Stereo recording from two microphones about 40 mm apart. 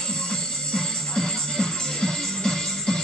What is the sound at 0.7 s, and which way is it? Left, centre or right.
Music, centre.